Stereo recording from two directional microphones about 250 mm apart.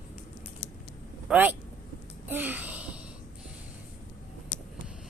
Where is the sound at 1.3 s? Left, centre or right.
Centre.